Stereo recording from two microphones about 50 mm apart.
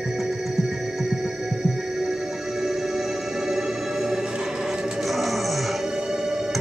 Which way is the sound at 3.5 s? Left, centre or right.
Centre.